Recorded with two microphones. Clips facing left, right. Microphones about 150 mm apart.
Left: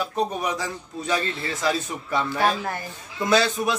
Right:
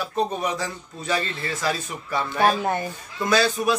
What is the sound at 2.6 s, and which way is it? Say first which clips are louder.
Speech: right 6 dB; 20° right (ahead or behind).